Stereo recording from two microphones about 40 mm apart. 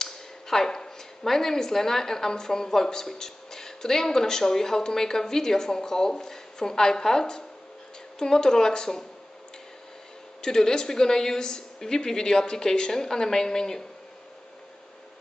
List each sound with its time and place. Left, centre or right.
0.0 s a woman's voice: centre
10.4 s a woman's voice: centre